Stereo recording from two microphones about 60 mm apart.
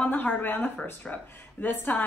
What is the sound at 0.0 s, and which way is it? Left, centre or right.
Speech, left.